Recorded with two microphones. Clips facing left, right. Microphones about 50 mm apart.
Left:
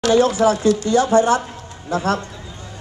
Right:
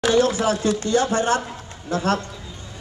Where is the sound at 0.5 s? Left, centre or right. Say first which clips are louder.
Left 4 dB; right.